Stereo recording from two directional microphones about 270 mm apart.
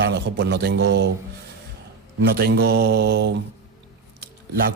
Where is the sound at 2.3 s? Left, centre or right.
Right.